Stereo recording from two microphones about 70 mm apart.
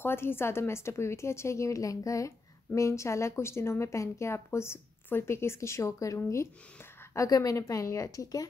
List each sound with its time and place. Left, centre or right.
0.0 s speech: left
7.2 s a woman's voice: left